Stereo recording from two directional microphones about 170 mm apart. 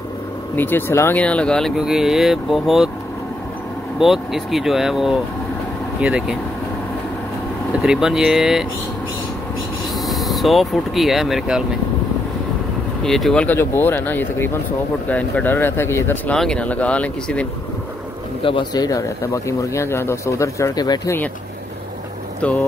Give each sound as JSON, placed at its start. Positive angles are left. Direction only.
{"t": 0.6, "sound": "speech", "side_deg": 10}
{"t": 4.0, "sound": "speech", "side_deg": 0}
{"t": 7.8, "sound": "speech", "side_deg": -5}
{"t": 10.0, "sound": "speech", "side_deg": 0}
{"t": 13.0, "sound": "speech", "side_deg": 0}
{"t": 18.4, "sound": "speech", "side_deg": 30}